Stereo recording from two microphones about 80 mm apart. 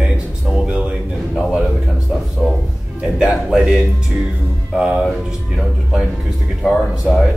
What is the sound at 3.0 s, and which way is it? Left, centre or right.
Speech, centre.